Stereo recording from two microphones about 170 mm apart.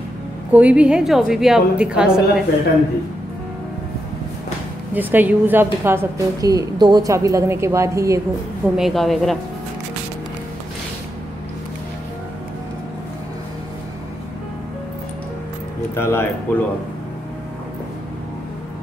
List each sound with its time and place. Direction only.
0.5 s a woman's voice: 10° right (ahead or behind)
4.9 s a woman's voice: 10° right (ahead or behind)
8.7 s a woman's voice: centre (ahead or behind)
15.9 s speech: 15° left (ahead or behind)